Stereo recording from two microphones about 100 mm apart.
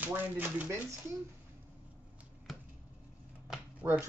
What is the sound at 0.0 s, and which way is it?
Speech, 15° right (ahead or behind).